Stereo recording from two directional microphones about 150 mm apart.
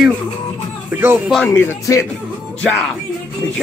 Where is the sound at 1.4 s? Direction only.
15° left (ahead or behind).